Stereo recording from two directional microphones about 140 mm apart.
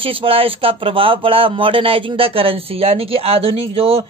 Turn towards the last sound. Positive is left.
turn(degrees=-45)  # may be behind; listen again after turning